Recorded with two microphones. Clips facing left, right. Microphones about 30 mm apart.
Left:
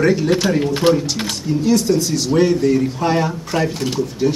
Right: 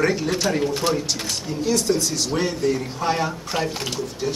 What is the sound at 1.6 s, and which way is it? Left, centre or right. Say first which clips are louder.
Speech: left 4 dB; centre.